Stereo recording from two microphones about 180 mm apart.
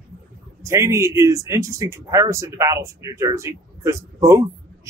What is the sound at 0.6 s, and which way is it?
A man's voice, 15° right (ahead or behind).